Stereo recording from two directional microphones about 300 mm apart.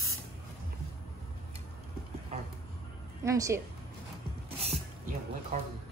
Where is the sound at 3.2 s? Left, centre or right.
Centre.